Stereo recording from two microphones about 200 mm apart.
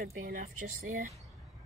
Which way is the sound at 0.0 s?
45° right (ahead or behind).